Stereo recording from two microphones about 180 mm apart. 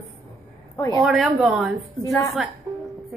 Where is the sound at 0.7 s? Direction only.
15° left (ahead or behind).